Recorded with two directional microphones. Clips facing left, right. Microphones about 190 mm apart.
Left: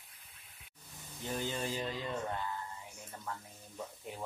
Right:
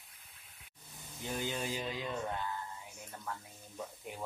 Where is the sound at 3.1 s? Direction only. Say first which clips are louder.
Even; centre (ahead or behind).